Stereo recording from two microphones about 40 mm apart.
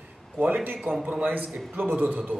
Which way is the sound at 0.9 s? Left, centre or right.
Right.